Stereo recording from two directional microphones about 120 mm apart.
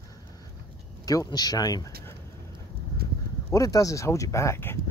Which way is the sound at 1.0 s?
30° left (ahead or behind).